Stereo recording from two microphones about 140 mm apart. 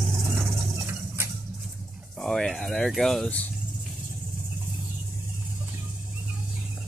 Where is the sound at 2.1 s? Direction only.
5° left (ahead or behind).